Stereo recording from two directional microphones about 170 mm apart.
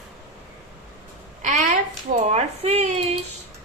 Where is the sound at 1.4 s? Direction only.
45° right (ahead or behind).